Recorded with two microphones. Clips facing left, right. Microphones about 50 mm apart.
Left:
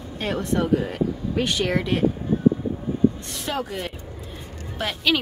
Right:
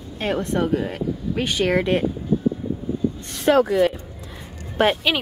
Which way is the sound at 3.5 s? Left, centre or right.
Right.